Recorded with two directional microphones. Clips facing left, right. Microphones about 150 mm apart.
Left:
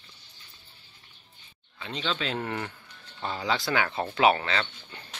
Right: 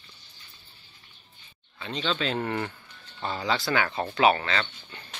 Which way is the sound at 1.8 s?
10° left (ahead or behind).